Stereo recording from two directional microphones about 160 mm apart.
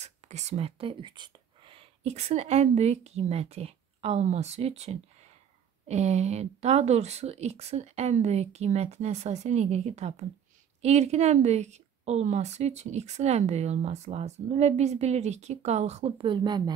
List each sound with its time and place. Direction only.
0.0 s a woman's voice: 45° right (ahead or behind); by 16.7 s 25° right (ahead or behind)